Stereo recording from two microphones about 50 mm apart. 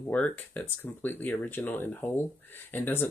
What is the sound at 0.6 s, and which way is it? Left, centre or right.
Speech, left.